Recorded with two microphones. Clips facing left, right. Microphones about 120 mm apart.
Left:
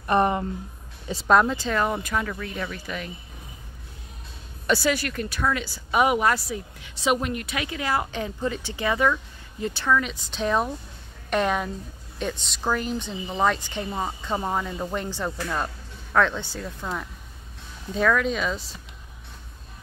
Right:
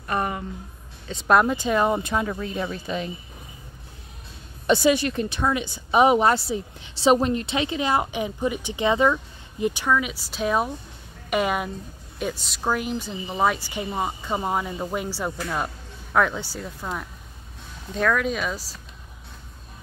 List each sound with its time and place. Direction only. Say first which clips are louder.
0.0 s speech: left 5 dB; 25° left (ahead or behind)
1.1 s speech: even; 5° right (ahead or behind)
1.6 s a woman's voice: right 3 dB; 15° right (ahead or behind)
4.6 s a woman's voice: right 4 dB; 20° right (ahead or behind); by 18.8 s 5° right (ahead or behind)